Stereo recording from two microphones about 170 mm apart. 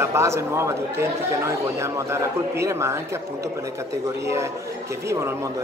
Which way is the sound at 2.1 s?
15° right (ahead or behind).